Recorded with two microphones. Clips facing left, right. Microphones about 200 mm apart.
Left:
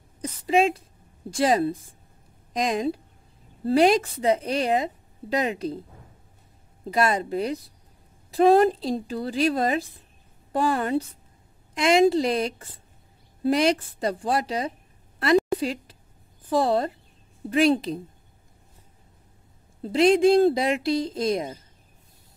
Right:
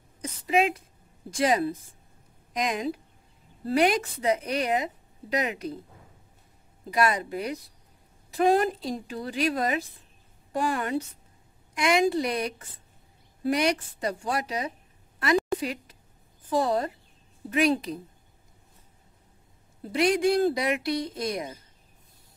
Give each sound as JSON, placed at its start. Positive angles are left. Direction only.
{"t": 0.2, "sound": "a sound", "side_deg": 30}
{"t": 1.3, "sound": "a woman's voice", "side_deg": 30}
{"t": 6.9, "sound": "a woman's voice", "side_deg": 30}
{"t": 15.1, "sound": "a sound", "side_deg": 30}
{"t": 16.4, "sound": "a woman's voice", "side_deg": 30}
{"t": 19.8, "sound": "speech", "side_deg": 25}